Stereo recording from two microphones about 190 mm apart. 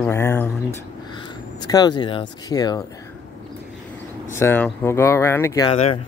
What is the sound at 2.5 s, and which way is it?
Speech, 20° left (ahead or behind).